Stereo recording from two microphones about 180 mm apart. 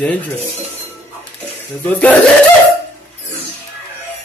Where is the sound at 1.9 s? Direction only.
10° left (ahead or behind).